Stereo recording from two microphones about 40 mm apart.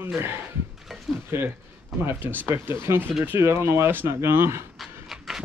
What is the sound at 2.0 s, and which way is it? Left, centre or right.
Speech, right.